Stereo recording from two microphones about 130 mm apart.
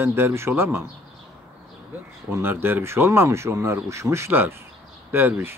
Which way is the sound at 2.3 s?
15° right (ahead or behind).